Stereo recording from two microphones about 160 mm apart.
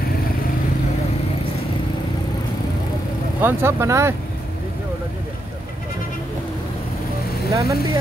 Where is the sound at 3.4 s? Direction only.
15° right (ahead or behind).